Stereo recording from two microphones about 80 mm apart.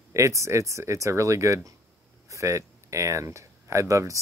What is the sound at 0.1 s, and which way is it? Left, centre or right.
Speech, right.